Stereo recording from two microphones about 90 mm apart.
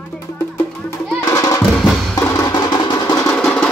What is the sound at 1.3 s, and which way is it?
Music, 40° left (ahead or behind).